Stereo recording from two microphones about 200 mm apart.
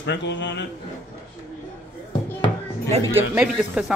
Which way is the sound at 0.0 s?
60° left (ahead or behind).